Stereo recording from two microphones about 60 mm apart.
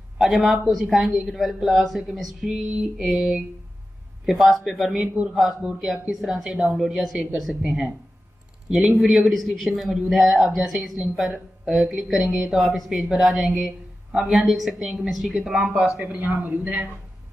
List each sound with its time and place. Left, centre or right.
0.2 s speech: centre
16.0 s speech: right